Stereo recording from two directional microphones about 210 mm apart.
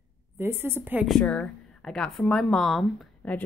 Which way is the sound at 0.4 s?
10° right (ahead or behind).